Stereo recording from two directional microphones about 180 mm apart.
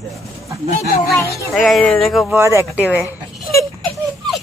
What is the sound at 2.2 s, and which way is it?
Speech, 15° right (ahead or behind).